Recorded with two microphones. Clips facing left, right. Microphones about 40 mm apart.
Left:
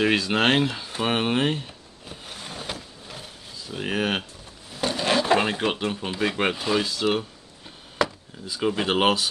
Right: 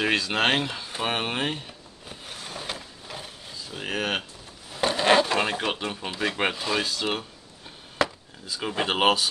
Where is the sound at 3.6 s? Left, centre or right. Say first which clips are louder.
Left 3 dB; centre.